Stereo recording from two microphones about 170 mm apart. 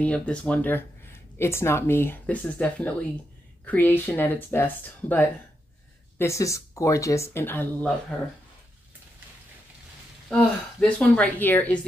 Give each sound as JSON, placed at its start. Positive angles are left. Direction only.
{"t": 0.0, "sound": "speech", "side_deg": 5}
{"t": 10.3, "sound": "speech", "side_deg": 5}